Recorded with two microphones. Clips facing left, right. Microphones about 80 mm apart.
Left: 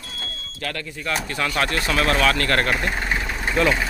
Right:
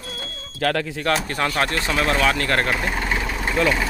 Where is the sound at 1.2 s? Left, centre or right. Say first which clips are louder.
Right 2 dB; right.